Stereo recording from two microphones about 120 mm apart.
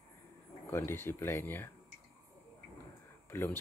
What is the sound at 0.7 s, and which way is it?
Speech, 20° left (ahead or behind).